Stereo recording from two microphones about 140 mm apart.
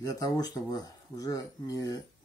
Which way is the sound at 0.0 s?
25° left (ahead or behind).